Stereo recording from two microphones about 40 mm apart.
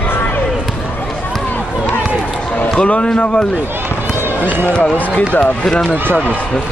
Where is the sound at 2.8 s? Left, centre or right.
Left.